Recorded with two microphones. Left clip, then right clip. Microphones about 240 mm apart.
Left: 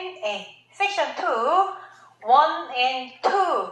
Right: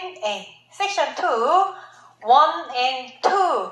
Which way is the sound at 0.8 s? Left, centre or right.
Right.